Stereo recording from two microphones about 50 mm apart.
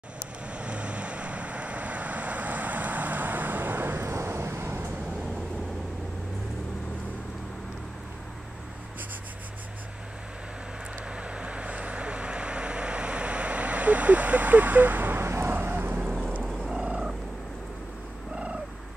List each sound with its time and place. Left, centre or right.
0.5 s vehicle: right
11.1 s vehicle: right
15.5 s vehicle: right
16.8 s frog: centre
18.3 s purr: centre